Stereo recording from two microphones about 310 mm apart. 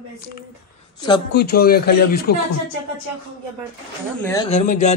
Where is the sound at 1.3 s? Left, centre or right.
Left.